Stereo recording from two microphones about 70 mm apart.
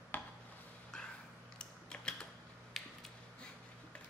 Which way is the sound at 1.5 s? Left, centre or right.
Centre.